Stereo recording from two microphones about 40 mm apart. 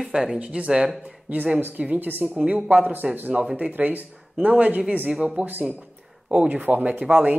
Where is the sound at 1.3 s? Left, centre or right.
Right.